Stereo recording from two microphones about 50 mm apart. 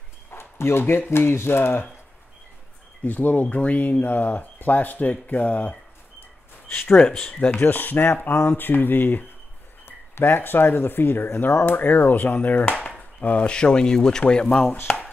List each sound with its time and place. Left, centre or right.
0.3 s bow-wow: left
1.1 s speech: left
3.0 s speech: left
7.0 s speech: left
7.6 s speech: left
8.3 s speech: left
13.5 s speech: centre
14.9 s a sound: left